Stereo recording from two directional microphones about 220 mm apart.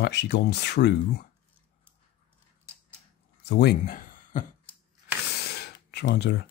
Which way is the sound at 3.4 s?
50° left (ahead or behind).